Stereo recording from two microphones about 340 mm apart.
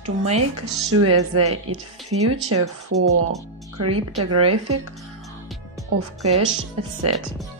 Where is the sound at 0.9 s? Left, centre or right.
Right.